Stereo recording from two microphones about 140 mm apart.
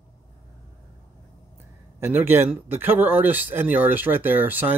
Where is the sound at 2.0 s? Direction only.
15° right (ahead or behind).